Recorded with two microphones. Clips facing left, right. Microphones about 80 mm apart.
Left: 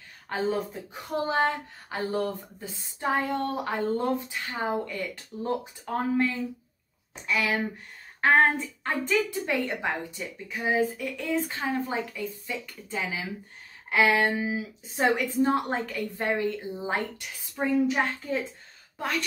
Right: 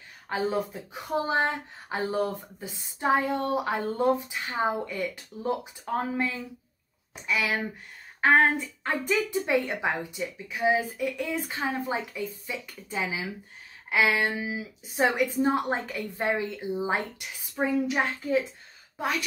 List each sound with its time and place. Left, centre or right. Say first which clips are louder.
0.3 s speech: even; centre
1.2 s speech: left 3 dB; right
7.2 s speech: left 1 dB; centre
8.2 s a sound: even; centre
9.1 s speech: right 2 dB; centre
13.8 s a sound: left 2 dB; centre
14.2 s speech: left 3 dB; centre
15.1 s a woman's voice: even; centre
17.6 s speech: left 1 dB; centre